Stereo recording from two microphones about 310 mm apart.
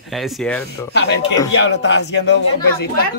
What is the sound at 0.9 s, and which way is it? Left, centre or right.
Speech, left.